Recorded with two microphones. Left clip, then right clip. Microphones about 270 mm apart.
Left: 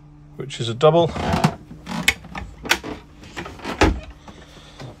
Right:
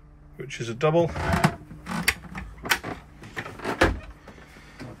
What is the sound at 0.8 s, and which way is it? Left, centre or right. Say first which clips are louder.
Speech: left 7 dB; centre.